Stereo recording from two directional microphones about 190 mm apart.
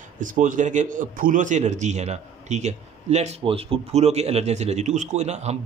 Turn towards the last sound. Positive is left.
turn(degrees=-35)  # may be behind; listen again after turning